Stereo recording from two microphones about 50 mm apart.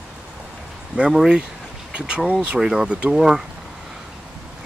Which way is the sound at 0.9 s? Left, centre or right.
Centre.